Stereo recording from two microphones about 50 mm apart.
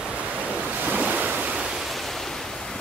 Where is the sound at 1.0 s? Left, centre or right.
Right.